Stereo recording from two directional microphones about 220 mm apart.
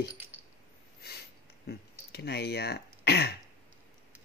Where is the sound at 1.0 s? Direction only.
45° left (ahead or behind).